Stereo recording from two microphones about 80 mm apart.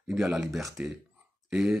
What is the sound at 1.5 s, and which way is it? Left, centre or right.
Speech, centre.